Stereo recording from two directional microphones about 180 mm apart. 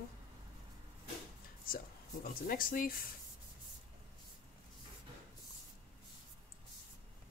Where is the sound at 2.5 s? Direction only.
50° left (ahead or behind).